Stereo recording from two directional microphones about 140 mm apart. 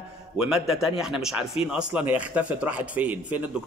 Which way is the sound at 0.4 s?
5° right (ahead or behind).